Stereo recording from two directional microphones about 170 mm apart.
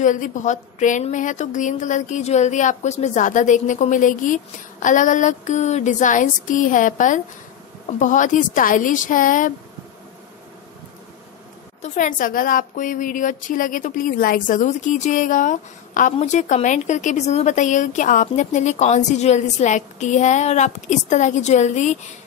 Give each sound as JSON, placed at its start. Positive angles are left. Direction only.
{"t": 0.0, "sound": "a woman's voice", "side_deg": 50}
{"t": 11.8, "sound": "a woman's voice", "side_deg": 45}